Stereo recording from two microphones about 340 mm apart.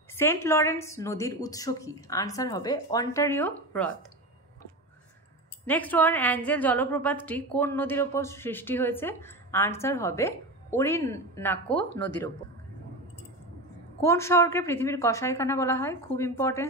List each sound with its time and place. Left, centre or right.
0.1 s a woman's voice: centre
5.7 s a woman's voice: centre
14.0 s a woman's voice: centre